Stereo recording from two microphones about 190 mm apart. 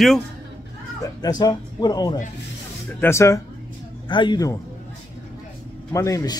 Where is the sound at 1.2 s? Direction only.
20° left (ahead or behind).